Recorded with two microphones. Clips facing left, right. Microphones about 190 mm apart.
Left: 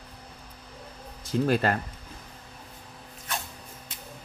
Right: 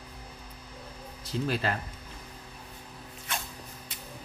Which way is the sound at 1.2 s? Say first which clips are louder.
Left 6 dB; 50° left (ahead or behind).